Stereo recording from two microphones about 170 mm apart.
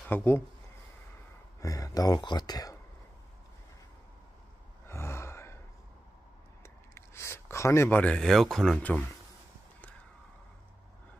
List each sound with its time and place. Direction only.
0.0 s speech: 10° left (ahead or behind)
1.6 s speech: 20° left (ahead or behind)
4.8 s a sound: 15° left (ahead or behind)
6.6 s speech: 15° left (ahead or behind)